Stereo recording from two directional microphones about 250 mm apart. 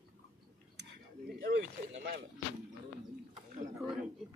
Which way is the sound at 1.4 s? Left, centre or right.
Right.